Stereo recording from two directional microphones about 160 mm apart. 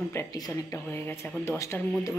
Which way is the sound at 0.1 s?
20° left (ahead or behind).